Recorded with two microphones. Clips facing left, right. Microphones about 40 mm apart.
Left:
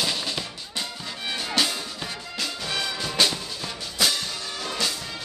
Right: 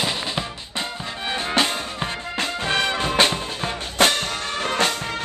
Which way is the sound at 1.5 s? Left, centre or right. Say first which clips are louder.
Right 4 dB; right.